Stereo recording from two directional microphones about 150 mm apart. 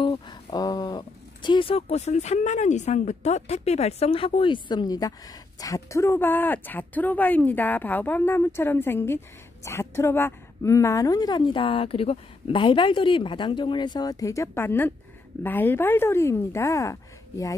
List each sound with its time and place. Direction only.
0.0 s a woman's voice: 30° left (ahead or behind)